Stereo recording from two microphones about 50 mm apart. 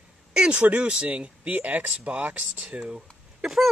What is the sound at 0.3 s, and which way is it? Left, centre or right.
Speech, centre.